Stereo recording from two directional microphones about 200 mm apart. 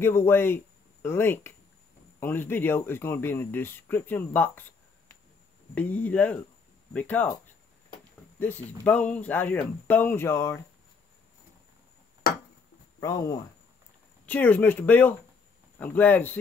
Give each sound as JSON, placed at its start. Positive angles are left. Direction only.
{"t": 0.0, "sound": "speech", "side_deg": 10}
{"t": 5.8, "sound": "speech", "side_deg": 10}
{"t": 8.4, "sound": "speech", "side_deg": 10}
{"t": 12.2, "sound": "tick-tock", "side_deg": 45}
{"t": 13.0, "sound": "speech", "side_deg": 15}